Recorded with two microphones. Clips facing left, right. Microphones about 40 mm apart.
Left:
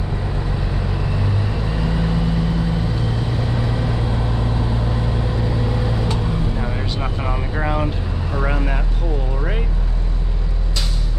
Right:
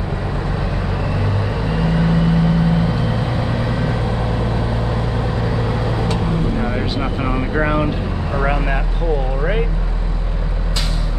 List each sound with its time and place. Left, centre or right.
1.9 s vehicle: right
6.6 s vehicle: centre